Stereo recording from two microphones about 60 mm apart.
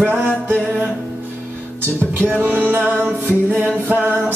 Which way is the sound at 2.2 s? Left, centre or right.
Right.